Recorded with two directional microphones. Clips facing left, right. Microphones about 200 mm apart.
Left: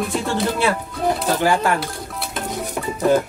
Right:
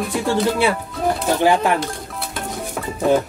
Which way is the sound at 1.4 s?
20° right (ahead or behind).